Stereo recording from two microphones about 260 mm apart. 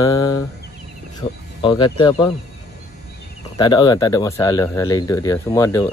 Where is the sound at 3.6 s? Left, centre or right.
Centre.